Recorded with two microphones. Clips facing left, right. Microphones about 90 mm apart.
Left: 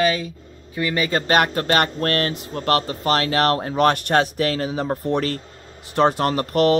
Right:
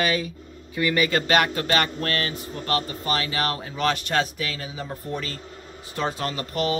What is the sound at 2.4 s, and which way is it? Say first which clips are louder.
Speech: left 6 dB; 80° left.